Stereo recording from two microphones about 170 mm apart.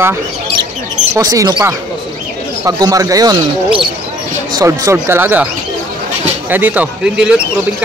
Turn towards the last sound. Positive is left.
turn(degrees=-5)  # may be behind; listen again after turning